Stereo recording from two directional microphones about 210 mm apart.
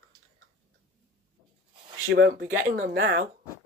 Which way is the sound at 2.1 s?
50° right (ahead or behind).